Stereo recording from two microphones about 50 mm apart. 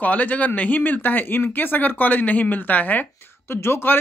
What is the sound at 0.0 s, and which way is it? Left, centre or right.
Speech, left.